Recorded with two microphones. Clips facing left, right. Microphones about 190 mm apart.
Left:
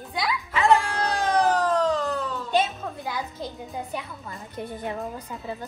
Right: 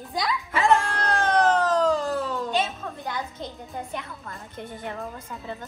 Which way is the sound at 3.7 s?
5° left (ahead or behind).